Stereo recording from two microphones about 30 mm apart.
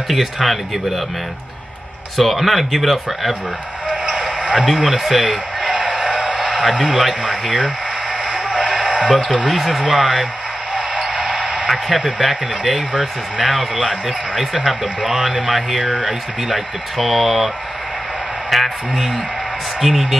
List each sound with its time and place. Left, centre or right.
0.1 s a man's voice: centre
2.1 s a man's voice: centre
4.4 s a sound: right
4.7 s speech: centre
5.7 s music: right
6.8 s speech: centre
7.2 s speech: right
8.5 s sheep: centre
9.5 s a man's voice: centre
9.8 s speech: centre
11.1 s a sound: right
11.6 s a man's voice: centre
15.8 s a man's voice: centre
18.5 s a man's voice: centre